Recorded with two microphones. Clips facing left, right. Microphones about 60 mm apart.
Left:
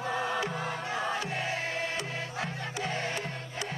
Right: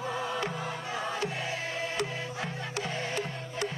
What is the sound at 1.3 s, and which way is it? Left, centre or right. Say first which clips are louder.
Music: left 2 dB; left.